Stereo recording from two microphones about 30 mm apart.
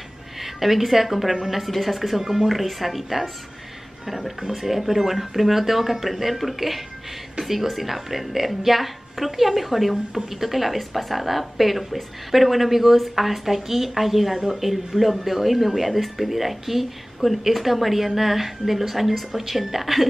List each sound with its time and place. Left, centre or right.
0.4 s a woman's voice: centre
1.6 s a woman's voice: centre
2.2 s speech: centre
2.5 s a woman's voice: centre